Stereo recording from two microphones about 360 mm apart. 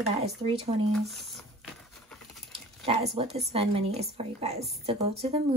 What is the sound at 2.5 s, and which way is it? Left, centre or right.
Speech, centre.